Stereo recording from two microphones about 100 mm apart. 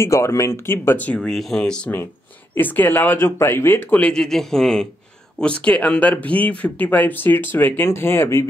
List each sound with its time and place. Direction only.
0.0 s speech: 30° left (ahead or behind); by 1.3 s 15° left (ahead or behind)
1.3 s a man's voice: centre (ahead or behind)
2.5 s speech: 20° left (ahead or behind)
4.0 s a man's voice: 5° left (ahead or behind); by 8.5 s 25° left (ahead or behind)